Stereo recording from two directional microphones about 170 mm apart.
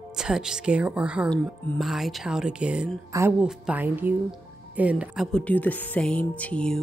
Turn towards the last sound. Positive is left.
turn(degrees=5)  # may be behind; listen again after turning